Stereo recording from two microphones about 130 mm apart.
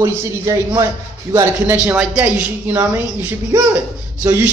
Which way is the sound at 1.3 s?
20° right (ahead or behind).